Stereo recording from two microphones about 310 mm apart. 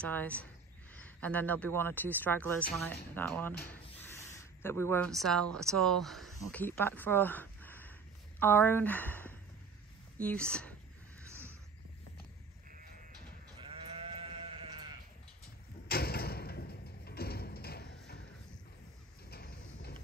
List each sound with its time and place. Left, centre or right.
0.0 s speech: centre
13.6 s sheep: centre
15.9 s thump: left
19.3 s a sound: left